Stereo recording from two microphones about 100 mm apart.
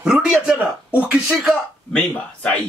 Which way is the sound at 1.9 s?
15° left (ahead or behind).